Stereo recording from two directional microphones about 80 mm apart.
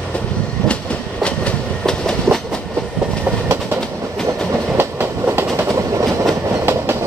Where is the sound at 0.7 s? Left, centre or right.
Centre.